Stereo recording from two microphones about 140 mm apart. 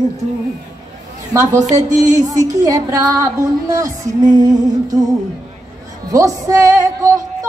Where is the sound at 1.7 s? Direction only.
25° right (ahead or behind).